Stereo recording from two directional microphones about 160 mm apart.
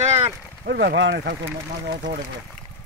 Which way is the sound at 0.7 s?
90° right.